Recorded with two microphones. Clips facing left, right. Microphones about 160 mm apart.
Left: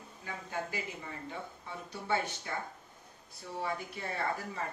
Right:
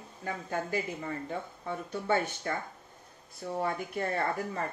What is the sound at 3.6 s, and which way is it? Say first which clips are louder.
Speech: right 5 dB; 55° right (ahead or behind).